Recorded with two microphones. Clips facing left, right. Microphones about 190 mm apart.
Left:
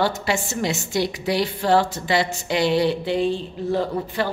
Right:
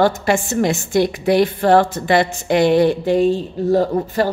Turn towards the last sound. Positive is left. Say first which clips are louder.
# right 6 dB
turn(degrees=-40)  # may be behind; listen again after turning